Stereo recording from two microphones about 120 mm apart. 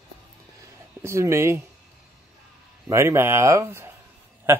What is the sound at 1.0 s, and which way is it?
Speech, 25° right (ahead or behind).